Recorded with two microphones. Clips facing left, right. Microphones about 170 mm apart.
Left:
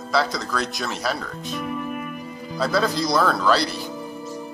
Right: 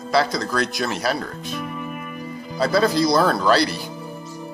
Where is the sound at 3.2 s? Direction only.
30° right (ahead or behind).